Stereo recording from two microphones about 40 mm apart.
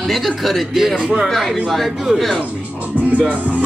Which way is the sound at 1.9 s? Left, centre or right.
Centre.